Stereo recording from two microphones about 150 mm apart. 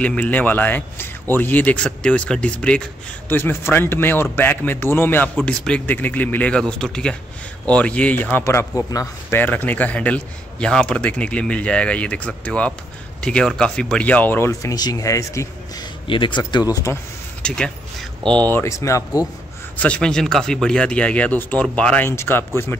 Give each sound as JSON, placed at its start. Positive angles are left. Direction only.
{"t": 0.0, "sound": "a man's voice", "side_deg": 10}
{"t": 16.1, "sound": "speech", "side_deg": 35}
{"t": 17.4, "sound": "a sound", "side_deg": 5}
{"t": 18.5, "sound": "speech", "side_deg": 20}
{"t": 19.8, "sound": "a man's voice", "side_deg": 5}